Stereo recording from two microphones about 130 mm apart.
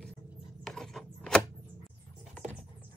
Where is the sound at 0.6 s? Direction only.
Centre (ahead or behind).